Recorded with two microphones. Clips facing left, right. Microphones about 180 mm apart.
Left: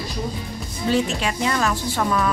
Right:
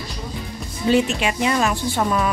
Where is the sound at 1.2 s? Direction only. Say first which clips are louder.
Right 2 dB; 15° right (ahead or behind).